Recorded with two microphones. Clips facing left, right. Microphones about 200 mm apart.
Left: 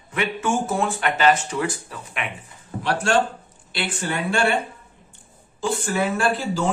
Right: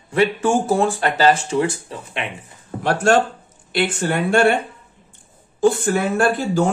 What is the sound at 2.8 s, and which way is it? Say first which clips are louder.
Speech: right 4 dB; 50° right (ahead or behind).